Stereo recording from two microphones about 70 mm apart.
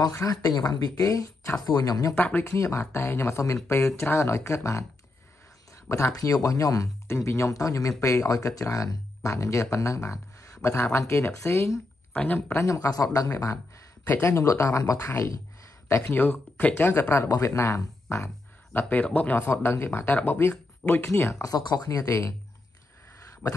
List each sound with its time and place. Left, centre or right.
0.1 s speech: left
0.5 s speech: left
2.1 s speech: left
2.4 s speech: left
5.9 s speech: left
7.1 s speech: left
12.1 s speech: left
12.5 s speech: left
16.1 s speech: left
17.4 s speech: left
18.7 s speech: left
21.5 s speech: left
21.8 s speech: left
23.4 s speech: left